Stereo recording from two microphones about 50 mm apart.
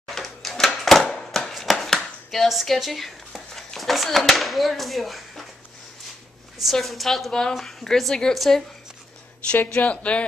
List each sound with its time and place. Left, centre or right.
0.1 s a sound: centre
2.0 s speech: centre
6.6 s a woman's voice: centre
9.8 s speech: left